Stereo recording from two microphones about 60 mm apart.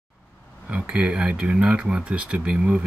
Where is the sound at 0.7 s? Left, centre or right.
Centre.